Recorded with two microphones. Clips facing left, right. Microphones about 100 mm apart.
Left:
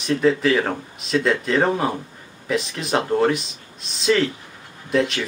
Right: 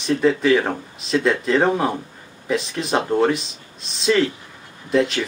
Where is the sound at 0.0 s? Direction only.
Centre (ahead or behind).